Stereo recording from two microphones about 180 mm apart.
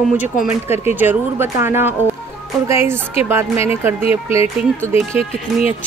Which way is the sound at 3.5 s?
35° left (ahead or behind).